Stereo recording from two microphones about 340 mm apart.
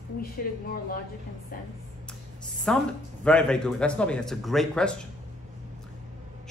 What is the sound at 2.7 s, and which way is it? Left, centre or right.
Speech, centre.